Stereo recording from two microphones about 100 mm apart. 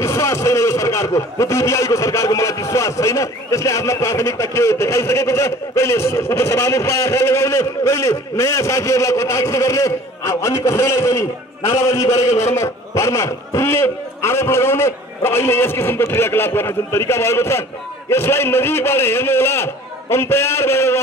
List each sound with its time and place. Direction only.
0.0 s a man's voice: 30° left (ahead or behind)